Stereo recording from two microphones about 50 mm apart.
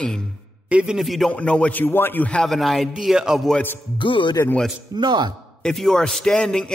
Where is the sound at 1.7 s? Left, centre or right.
Left.